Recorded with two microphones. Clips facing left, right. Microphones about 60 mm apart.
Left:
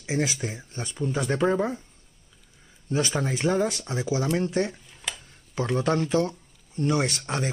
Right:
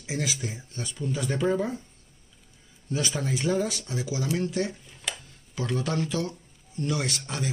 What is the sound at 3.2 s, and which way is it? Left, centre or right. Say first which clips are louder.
Speech: left 2 dB; left.